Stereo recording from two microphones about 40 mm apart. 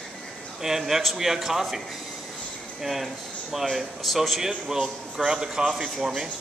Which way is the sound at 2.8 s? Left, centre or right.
Centre.